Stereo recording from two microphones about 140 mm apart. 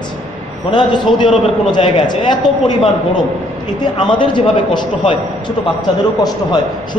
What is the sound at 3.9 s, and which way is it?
A man's voice, 35° left (ahead or behind).